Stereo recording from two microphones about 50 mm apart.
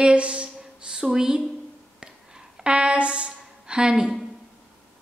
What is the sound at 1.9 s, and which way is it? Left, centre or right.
Music, centre.